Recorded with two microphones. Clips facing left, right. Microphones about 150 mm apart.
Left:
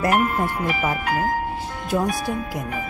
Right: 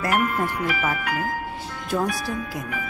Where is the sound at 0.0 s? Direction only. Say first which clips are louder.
Left 3 dB; 25° left (ahead or behind).